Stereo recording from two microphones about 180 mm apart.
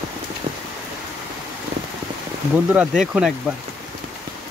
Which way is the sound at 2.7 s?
5° right (ahead or behind).